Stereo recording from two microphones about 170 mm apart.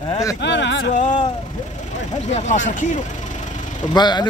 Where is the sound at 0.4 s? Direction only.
90° left.